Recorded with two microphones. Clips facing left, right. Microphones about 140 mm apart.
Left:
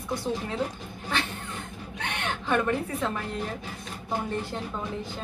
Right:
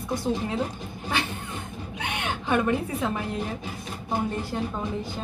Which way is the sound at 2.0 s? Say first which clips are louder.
Right 1 dB; 10° right (ahead or behind).